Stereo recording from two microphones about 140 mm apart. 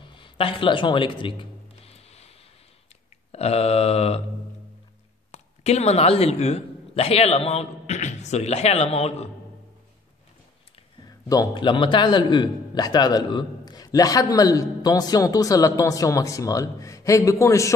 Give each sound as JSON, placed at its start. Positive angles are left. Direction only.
{"t": 0.0, "sound": "speech", "side_deg": 35}
{"t": 1.9, "sound": "music", "side_deg": 50}
{"t": 3.3, "sound": "a sound", "side_deg": 45}
{"t": 5.3, "sound": "a man's voice", "side_deg": 50}
{"t": 11.1, "sound": "a man's voice", "side_deg": 25}